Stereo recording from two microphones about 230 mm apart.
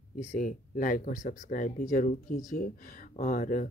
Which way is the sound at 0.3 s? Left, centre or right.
Left.